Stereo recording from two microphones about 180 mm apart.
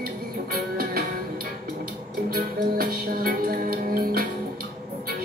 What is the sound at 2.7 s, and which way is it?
Music, 55° right (ahead or behind).